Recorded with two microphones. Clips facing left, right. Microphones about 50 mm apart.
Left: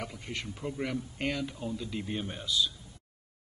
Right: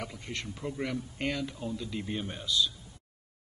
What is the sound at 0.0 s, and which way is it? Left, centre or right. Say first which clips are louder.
Speech: even; centre.